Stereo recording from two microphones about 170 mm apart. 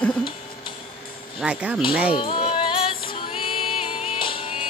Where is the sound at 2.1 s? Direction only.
30° left (ahead or behind).